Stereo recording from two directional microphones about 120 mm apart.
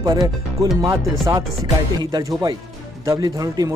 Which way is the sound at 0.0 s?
35° right (ahead or behind).